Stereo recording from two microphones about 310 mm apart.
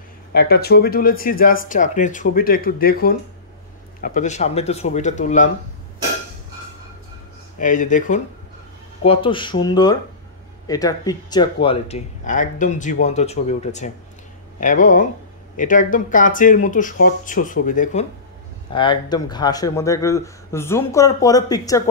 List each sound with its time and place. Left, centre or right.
0.3 s speech: left
7.5 s speech: left